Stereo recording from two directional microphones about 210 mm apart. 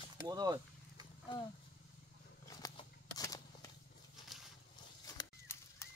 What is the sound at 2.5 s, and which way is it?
Shuffling cards, 20° left (ahead or behind).